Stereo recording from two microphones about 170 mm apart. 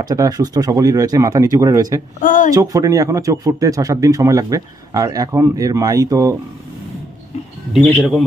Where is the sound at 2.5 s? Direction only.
20° right (ahead or behind).